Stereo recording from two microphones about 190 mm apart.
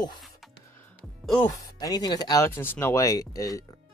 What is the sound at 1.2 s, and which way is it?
Speech, 5° left (ahead or behind).